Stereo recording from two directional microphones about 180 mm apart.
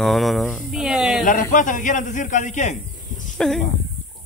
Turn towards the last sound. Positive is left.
turn(degrees=5)  # may be behind; listen again after turning